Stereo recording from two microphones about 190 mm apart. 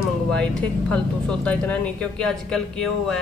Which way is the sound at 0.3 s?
5° left (ahead or behind).